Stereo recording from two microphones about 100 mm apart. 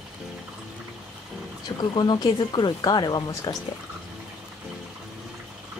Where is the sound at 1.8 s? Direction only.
45° left (ahead or behind).